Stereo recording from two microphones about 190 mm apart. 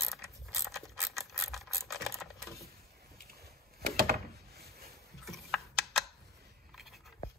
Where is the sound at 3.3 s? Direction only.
55° right (ahead or behind).